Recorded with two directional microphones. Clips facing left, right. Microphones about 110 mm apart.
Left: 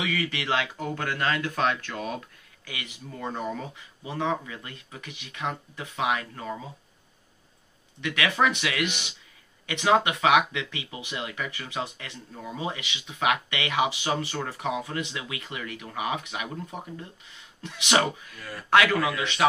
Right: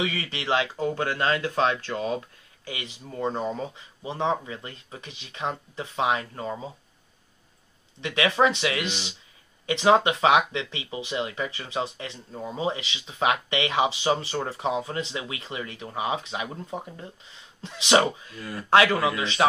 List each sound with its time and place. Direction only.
0.0 s speech: 25° right (ahead or behind)
8.0 s speech: 30° right (ahead or behind)